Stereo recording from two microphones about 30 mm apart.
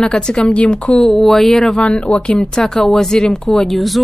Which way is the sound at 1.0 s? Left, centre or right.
Centre.